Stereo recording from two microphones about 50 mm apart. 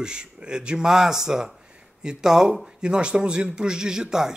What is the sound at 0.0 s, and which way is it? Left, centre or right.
Speech, centre.